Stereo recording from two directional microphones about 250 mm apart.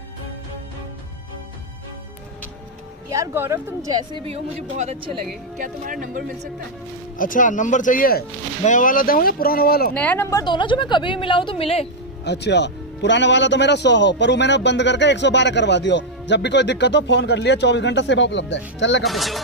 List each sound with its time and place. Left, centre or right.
3.1 s a woman's voice: centre; by 6.5 s right
7.2 s speech: left
9.9 s a woman's voice: centre; by 11.9 s left
12.3 s a man's voice: left
19.0 s speech: centre